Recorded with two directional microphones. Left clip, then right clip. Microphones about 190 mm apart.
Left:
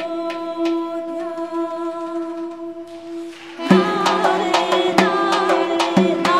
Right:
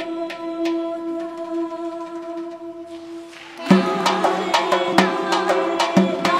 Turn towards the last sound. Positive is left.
turn(degrees=-15)  # may be behind; listen again after turning